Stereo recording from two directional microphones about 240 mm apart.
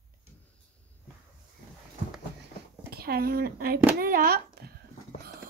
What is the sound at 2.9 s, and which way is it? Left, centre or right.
Speech, right.